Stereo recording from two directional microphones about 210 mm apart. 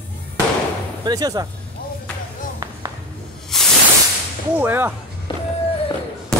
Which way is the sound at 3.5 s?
Centre (ahead or behind).